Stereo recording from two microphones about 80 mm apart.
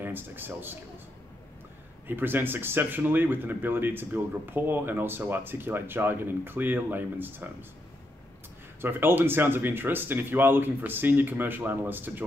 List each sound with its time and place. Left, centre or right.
0.0 s a man's voice: right
2.0 s speech: right
8.8 s speech: right